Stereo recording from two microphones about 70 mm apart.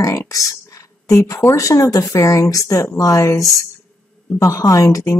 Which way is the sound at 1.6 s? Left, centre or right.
Left.